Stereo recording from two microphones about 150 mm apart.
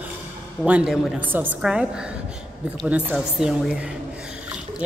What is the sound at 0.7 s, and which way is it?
A woman's voice, 10° right (ahead or behind).